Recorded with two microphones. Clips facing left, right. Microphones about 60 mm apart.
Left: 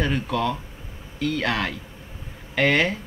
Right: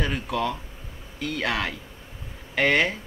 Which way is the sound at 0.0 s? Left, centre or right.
Centre.